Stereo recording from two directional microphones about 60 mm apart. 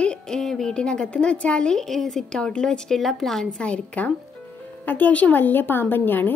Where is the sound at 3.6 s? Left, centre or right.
Left.